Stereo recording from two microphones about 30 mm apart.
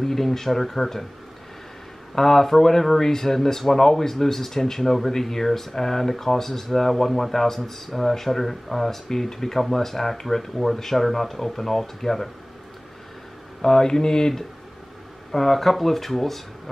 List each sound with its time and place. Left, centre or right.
0.0 s speech: centre
2.1 s speech: centre
13.6 s speech: centre
15.3 s speech: centre